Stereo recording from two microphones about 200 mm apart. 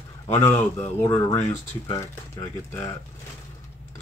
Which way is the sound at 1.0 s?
15° left (ahead or behind).